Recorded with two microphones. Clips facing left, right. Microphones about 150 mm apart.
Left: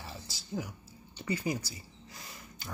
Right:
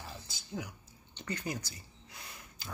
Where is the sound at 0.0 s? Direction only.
Centre (ahead or behind).